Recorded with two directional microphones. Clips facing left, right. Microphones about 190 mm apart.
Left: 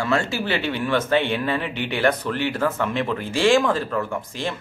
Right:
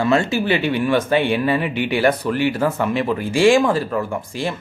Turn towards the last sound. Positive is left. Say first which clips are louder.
# right 3 dB
turn(degrees=-10)  # may be behind; listen again after turning